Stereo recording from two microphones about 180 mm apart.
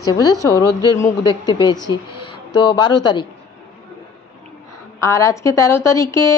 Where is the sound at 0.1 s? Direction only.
20° left (ahead or behind).